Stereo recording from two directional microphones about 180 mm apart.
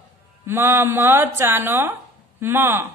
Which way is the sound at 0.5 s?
15° right (ahead or behind).